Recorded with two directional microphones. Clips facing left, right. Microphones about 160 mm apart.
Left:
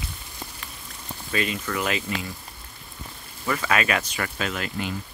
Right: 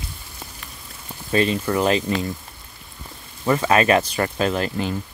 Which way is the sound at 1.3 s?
30° right (ahead or behind).